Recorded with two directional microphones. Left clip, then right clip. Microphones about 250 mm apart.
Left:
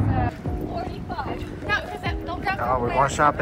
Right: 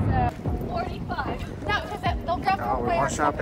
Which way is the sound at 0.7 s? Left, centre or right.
Centre.